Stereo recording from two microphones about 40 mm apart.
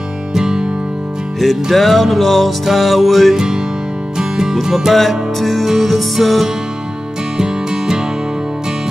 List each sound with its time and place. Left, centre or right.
0.3 s music: centre
1.4 s music: centre
3.3 s music: centre
7.3 s music: centre